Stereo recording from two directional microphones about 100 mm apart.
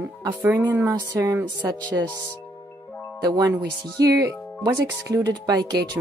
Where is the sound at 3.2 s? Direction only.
40° right (ahead or behind).